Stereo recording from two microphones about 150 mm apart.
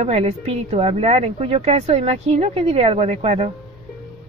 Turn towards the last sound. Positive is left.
turn(degrees=-45)  # may be behind; listen again after turning